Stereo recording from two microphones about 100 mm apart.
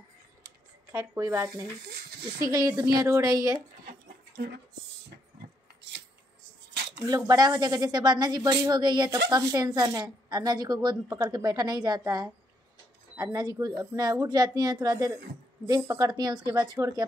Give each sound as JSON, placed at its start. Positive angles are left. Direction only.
{"t": 0.9, "sound": "speech", "side_deg": -30}
{"t": 2.4, "sound": "speech", "side_deg": -40}
{"t": 7.0, "sound": "speech", "side_deg": -40}
{"t": 13.1, "sound": "speech", "side_deg": -30}
{"t": 13.4, "sound": "speech", "side_deg": -40}